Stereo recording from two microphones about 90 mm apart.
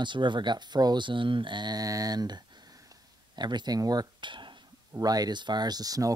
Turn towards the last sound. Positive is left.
turn(degrees=-40)  # may be behind; listen again after turning